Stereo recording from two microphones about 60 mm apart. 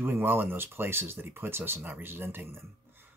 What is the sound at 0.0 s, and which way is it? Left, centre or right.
Speech, right.